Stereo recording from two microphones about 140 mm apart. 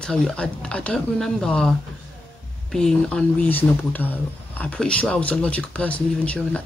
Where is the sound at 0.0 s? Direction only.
5° left (ahead or behind).